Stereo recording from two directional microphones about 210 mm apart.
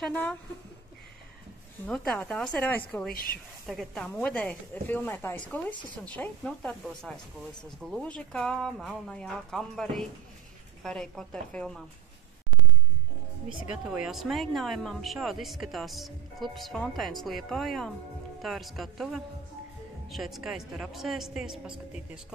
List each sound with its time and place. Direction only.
0.0 s speech: 5° left (ahead or behind)
1.9 s speech: 5° left (ahead or behind)
3.1 s a woman's voice: 45° left (ahead or behind)
3.6 s speech: centre (ahead or behind)
13.7 s speech: 5° right (ahead or behind)